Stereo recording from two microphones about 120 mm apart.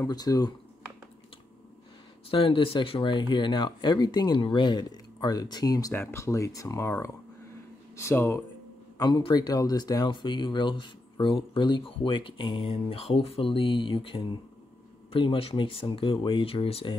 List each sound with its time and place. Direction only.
0.0 s speech: 30° left (ahead or behind)
2.3 s speech: 50° left (ahead or behind); by 6.9 s 25° left (ahead or behind)
7.9 s speech: 25° left (ahead or behind)
8.9 s speech: 35° left (ahead or behind); by 16.9 s 50° left (ahead or behind)